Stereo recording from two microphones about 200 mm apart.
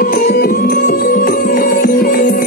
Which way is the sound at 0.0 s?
45° left (ahead or behind).